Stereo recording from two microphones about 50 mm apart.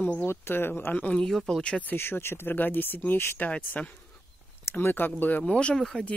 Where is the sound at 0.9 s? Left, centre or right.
Left.